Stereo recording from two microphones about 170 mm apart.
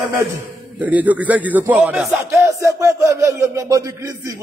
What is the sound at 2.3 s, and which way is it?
Speech, 15° right (ahead or behind).